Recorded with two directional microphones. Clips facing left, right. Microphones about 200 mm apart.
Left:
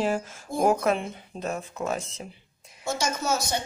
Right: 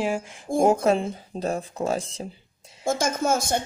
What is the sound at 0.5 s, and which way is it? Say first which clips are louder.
Speech: right 3 dB; 30° right (ahead or behind).